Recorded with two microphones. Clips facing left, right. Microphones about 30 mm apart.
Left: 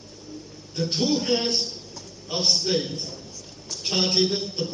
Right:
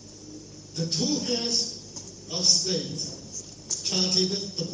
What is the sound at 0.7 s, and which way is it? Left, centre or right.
A man's voice, left.